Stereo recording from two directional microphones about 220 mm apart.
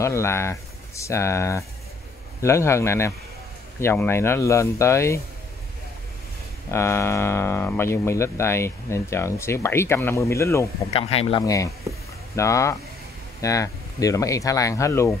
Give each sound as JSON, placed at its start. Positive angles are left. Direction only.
{"t": 0.0, "sound": "speech", "side_deg": 10}
{"t": 6.7, "sound": "speech", "side_deg": 10}
{"t": 10.9, "sound": "speech", "side_deg": 25}